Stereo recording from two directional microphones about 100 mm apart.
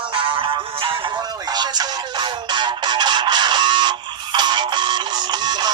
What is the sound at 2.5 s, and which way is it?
Music, 50° right (ahead or behind).